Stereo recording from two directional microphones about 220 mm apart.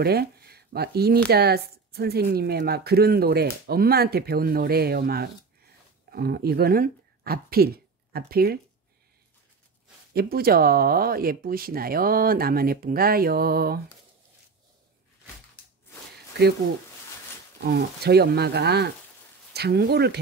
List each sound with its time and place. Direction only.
0.0 s speech: 45° right (ahead or behind)
10.1 s speech: 45° right (ahead or behind)
17.6 s speech: 45° right (ahead or behind)